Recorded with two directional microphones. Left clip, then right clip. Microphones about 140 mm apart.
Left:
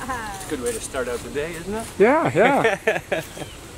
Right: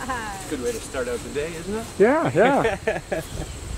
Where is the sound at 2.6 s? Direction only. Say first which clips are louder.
Left 3 dB; 35° left (ahead or behind).